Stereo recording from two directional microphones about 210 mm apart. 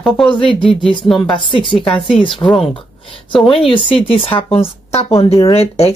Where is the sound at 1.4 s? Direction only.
25° left (ahead or behind).